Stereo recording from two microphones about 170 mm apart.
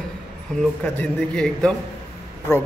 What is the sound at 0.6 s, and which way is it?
A man's voice, 10° left (ahead or behind).